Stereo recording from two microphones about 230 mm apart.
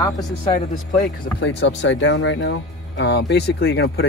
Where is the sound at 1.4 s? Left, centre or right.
Left.